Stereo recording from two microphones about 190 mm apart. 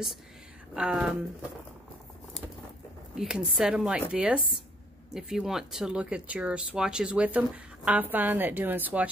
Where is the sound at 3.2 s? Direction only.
5° right (ahead or behind).